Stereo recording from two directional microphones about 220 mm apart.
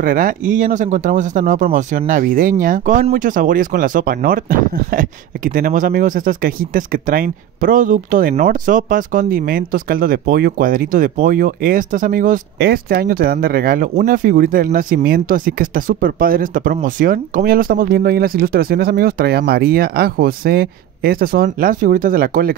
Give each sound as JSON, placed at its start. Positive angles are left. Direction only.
{"t": 0.0, "sound": "speech", "side_deg": -40}